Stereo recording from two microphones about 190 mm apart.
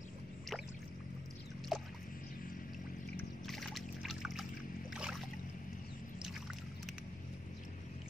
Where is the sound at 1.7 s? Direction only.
Centre (ahead or behind).